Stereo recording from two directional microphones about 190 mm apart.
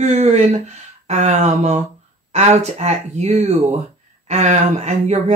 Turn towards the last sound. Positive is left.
turn(degrees=-35)  # may be behind; listen again after turning